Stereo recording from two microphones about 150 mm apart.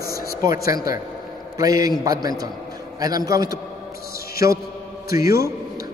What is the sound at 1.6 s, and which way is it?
A man's voice, 25° right (ahead or behind).